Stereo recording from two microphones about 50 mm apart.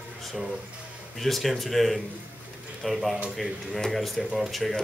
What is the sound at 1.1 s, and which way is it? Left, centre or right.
A man's voice, centre.